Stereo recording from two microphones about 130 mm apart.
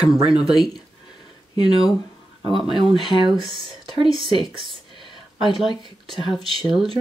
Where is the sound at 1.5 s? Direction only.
35° left (ahead or behind).